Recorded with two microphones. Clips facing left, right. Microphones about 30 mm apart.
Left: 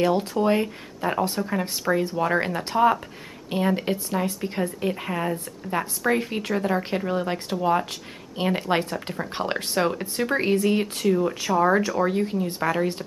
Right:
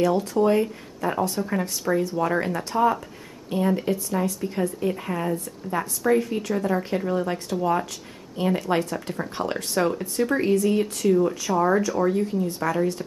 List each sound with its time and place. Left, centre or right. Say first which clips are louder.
0.0 s speech: right 1 dB; left
11.1 s speech: right 2 dB; centre
11.5 s speech: left 2 dB; left